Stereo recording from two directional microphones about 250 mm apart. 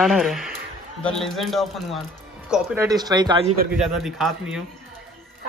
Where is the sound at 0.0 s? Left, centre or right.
Centre.